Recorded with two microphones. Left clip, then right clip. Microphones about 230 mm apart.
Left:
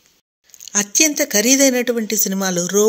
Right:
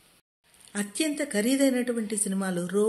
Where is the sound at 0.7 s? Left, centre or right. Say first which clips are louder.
Left 13 dB; left.